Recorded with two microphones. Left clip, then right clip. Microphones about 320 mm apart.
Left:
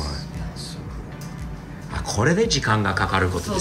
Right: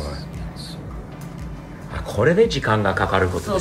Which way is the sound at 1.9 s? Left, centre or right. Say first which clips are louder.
Right 4 dB; centre.